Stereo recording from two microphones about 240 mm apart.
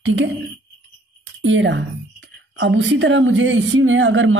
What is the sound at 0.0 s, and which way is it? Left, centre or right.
Speech, right.